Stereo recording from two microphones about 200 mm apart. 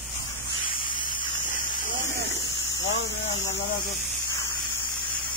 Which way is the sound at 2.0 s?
70° right (ahead or behind).